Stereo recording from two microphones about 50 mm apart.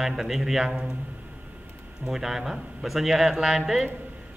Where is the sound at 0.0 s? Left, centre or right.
Centre.